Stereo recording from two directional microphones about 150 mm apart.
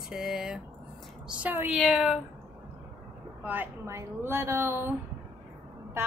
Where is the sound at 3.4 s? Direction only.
10° right (ahead or behind).